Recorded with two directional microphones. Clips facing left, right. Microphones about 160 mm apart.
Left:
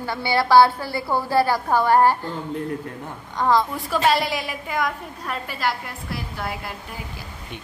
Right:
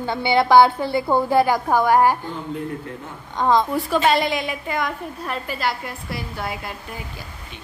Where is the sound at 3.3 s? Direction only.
20° right (ahead or behind).